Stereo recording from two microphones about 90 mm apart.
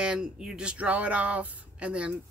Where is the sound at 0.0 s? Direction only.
10° right (ahead or behind).